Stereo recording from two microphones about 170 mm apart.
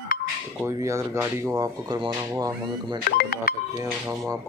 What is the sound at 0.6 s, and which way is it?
Speech, 15° right (ahead or behind).